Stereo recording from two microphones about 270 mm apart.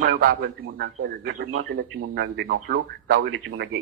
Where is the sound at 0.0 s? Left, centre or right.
Right.